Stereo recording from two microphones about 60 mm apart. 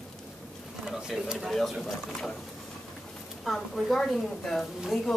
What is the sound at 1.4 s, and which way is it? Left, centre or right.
Speech, centre.